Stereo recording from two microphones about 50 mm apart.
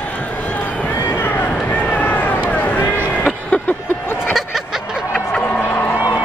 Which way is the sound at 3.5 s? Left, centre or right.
Left.